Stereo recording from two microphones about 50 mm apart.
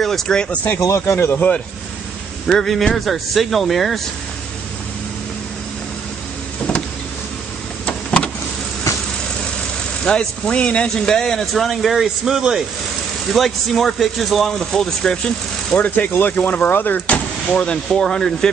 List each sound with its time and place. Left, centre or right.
0.0 s speech: centre
0.7 s speech: left
2.4 s speech: centre
6.7 s power windows: left
7.8 s vehicle: left
8.9 s vehicle: left
10.0 s speech: centre
11.5 s speech: centre
15.9 s speech: left
17.5 s speech: centre